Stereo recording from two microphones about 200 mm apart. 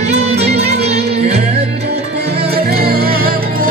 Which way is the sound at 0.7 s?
30° right (ahead or behind).